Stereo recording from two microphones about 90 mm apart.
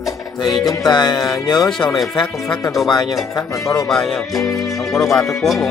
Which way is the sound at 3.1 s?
35° left (ahead or behind).